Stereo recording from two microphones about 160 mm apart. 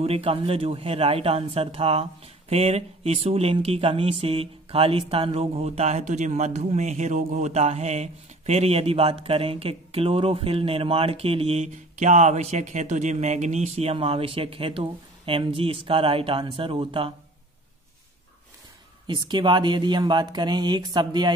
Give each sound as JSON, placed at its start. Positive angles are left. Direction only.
{"t": 0.0, "sound": "speech", "side_deg": -40}
{"t": 19.0, "sound": "speech", "side_deg": -30}